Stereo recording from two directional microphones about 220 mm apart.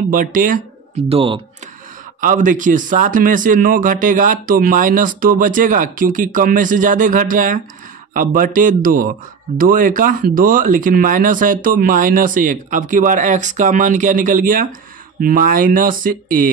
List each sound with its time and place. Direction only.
0.1 s a man's voice: 40° right (ahead or behind)
1.0 s speech: 25° right (ahead or behind)
2.1 s a man's voice: 35° right (ahead or behind)